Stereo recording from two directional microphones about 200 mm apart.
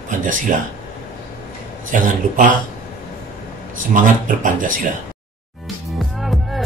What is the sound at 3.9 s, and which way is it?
Speech, 40° right (ahead or behind).